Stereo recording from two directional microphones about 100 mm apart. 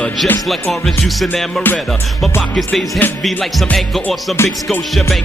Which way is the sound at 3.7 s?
Centre (ahead or behind).